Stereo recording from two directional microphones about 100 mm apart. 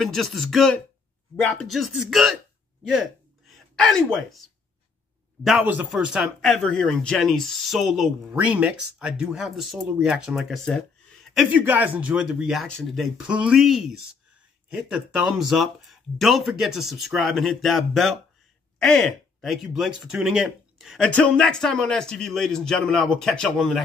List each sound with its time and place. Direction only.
0.0 s speech: centre (ahead or behind)
1.3 s speech: 15° left (ahead or behind)
1.7 s speech: centre (ahead or behind)
5.6 s speech: 20° right (ahead or behind)
5.9 s speech: 5° right (ahead or behind)
8.5 s speech: 15° right (ahead or behind); by 10.8 s 5° left (ahead or behind)
11.5 s speech: 15° right (ahead or behind)
12.6 s speech: 10° left (ahead or behind)
13.0 s speech: centre (ahead or behind)
21.2 s speech: 10° left (ahead or behind)